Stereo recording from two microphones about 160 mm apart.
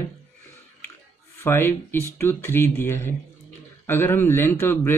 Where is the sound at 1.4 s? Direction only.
15° left (ahead or behind).